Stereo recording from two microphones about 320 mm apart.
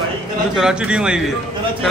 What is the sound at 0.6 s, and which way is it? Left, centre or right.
Speech, centre.